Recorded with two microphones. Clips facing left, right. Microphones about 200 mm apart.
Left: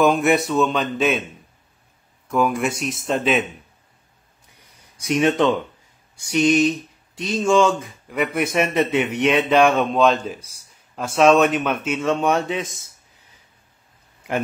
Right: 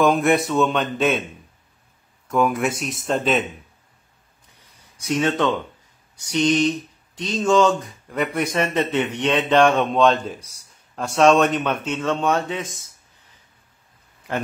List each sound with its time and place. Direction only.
0.0 s speech: centre (ahead or behind)
2.2 s speech: centre (ahead or behind)
5.0 s speech: 15° left (ahead or behind)